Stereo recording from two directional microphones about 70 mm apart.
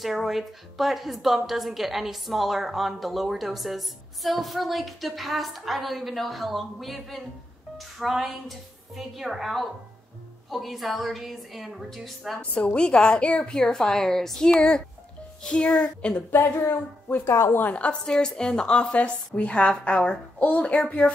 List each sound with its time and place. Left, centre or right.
0.0 s a woman's voice: centre
12.4 s a woman's voice: centre
16.3 s a woman's voice: left
17.6 s a woman's voice: left
21.0 s music: centre